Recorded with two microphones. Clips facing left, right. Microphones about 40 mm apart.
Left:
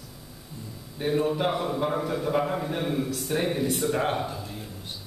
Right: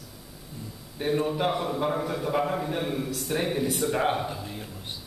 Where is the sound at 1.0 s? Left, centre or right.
Centre.